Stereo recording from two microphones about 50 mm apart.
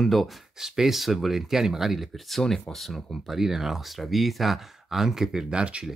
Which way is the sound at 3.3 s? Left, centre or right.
Centre.